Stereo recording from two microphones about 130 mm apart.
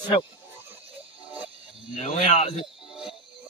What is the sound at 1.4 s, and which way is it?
Music, 45° right (ahead or behind).